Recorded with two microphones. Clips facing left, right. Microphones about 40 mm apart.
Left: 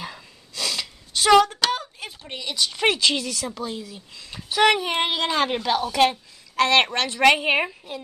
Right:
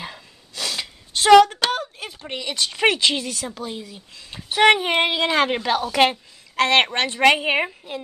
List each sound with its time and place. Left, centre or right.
0.0 s gasp: right
1.2 s a sound: right
2.7 s speech: right
4.5 s speech: right
6.5 s speech: right
7.2 s a woman's voice: centre